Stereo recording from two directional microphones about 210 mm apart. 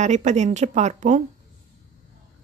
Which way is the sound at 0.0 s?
35° right (ahead or behind).